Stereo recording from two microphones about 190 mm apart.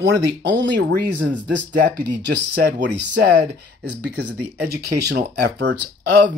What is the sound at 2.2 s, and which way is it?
Speech, 65° right (ahead or behind).